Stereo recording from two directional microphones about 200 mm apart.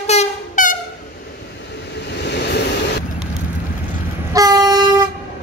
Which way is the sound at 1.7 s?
60° left (ahead or behind).